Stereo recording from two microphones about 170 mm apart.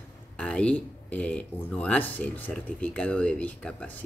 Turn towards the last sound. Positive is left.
turn(degrees=5)  # may be behind; listen again after turning